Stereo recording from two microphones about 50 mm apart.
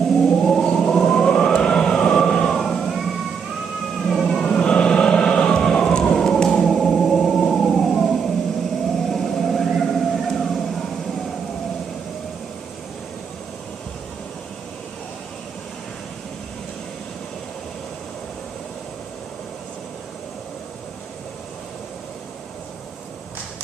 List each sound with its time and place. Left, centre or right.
0.0 s siren: centre
4.0 s vehicle: centre
4.6 s siren: centre
7.0 s a sound: centre
8.8 s siren: centre